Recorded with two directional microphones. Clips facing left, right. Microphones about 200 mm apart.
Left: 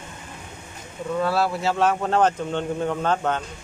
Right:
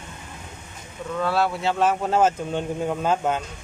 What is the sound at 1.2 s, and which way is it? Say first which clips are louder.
Speech: even; centre (ahead or behind).